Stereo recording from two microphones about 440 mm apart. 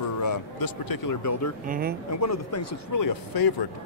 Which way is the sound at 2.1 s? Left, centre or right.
Left.